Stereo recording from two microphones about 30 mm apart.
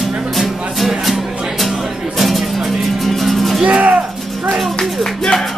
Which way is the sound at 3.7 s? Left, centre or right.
Right.